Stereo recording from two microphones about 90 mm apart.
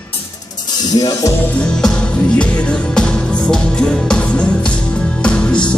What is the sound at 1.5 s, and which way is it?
Music, 10° left (ahead or behind).